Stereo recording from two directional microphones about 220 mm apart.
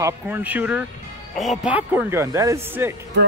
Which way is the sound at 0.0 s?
10° right (ahead or behind).